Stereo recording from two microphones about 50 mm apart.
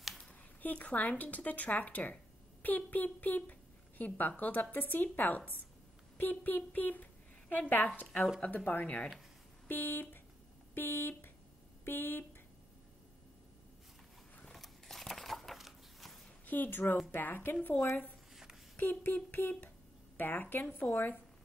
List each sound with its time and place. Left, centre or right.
0.6 s a woman's voice: left
9.7 s a woman's voice: left
14.5 s a sound: centre
16.4 s a woman's voice: left
18.3 s a sound: centre
18.8 s a woman's voice: left